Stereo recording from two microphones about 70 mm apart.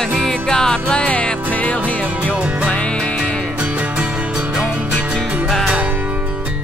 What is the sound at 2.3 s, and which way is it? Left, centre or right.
Music, centre.